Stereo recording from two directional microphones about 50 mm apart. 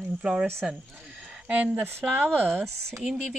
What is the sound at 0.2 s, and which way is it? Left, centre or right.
Speech, centre.